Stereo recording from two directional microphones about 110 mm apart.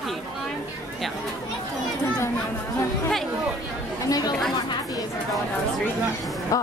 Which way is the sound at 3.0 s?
Centre (ahead or behind).